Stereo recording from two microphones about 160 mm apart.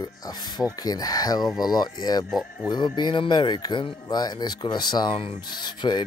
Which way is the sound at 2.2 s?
Centre (ahead or behind).